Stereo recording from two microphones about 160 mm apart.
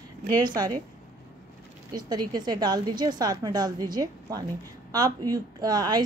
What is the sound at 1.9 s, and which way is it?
A woman's voice, 25° right (ahead or behind).